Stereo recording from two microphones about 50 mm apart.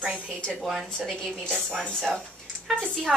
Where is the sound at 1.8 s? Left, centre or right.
Centre.